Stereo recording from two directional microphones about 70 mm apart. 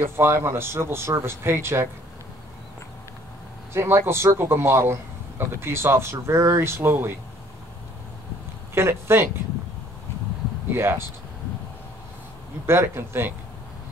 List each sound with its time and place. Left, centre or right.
0.0 s speech: right
3.7 s speech: right
8.7 s speech: right
10.7 s speech: right
12.6 s speech: right